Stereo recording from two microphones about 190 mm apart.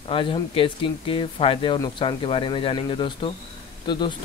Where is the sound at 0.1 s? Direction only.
25° left (ahead or behind).